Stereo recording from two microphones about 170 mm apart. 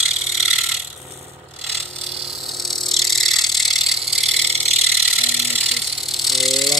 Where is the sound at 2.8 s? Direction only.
Centre (ahead or behind).